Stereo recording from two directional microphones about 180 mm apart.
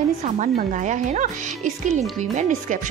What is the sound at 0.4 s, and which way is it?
Speech, 45° right (ahead or behind).